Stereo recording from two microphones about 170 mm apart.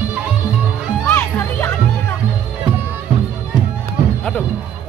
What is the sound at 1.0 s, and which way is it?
Children playing, 10° left (ahead or behind).